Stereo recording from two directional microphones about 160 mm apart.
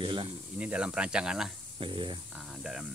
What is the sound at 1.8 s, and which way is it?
Speech, 30° right (ahead or behind).